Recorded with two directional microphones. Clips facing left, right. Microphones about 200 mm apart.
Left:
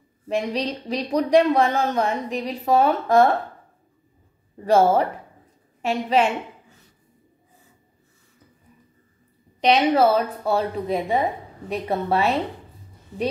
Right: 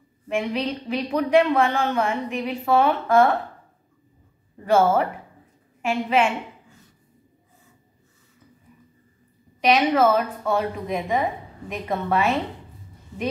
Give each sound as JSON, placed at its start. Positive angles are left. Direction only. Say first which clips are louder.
{"t": 0.3, "sound": "speech", "louder": "even", "side_deg": 35}
{"t": 4.6, "sound": "a woman's voice", "louder": "left 1 dB", "side_deg": 35}
{"t": 9.6, "sound": "speech", "louder": "left 1 dB", "side_deg": 30}